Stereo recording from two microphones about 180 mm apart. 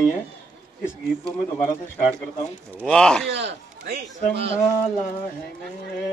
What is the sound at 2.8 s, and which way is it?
Speech, 5° left (ahead or behind).